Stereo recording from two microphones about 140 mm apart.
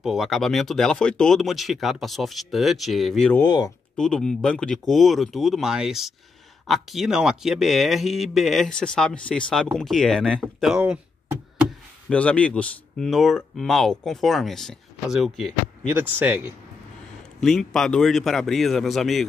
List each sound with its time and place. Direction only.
0.0 s speech: 5° right (ahead or behind)
3.4 s speech: 30° left (ahead or behind)
3.9 s speech: 5° left (ahead or behind)
12.1 s speech: 10° left (ahead or behind)
15.9 s speech: 10° right (ahead or behind)
17.4 s speech: centre (ahead or behind)